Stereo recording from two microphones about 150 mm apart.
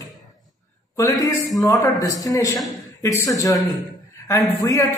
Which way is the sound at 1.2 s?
25° left (ahead or behind).